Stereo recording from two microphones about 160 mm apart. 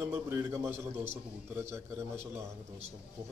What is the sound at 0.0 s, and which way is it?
A man's voice, 15° right (ahead or behind).